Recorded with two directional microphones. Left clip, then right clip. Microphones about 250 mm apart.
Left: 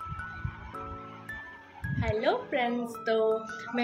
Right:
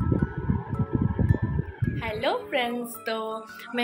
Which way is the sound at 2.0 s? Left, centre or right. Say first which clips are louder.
Right 1 dB; centre.